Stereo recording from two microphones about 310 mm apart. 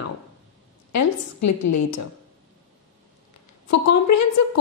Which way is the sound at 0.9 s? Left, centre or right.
Left.